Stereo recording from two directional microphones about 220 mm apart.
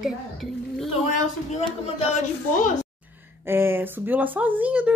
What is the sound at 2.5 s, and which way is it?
Speech, 35° left (ahead or behind).